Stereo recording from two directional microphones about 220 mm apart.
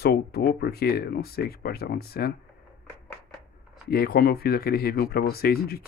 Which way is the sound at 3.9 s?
45° left (ahead or behind).